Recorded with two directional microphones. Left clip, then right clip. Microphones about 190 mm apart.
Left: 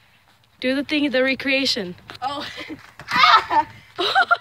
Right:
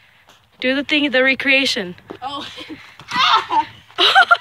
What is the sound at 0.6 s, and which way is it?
Speech, centre (ahead or behind).